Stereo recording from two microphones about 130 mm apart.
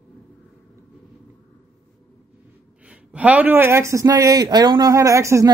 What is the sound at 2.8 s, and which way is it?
A man's voice, 10° right (ahead or behind).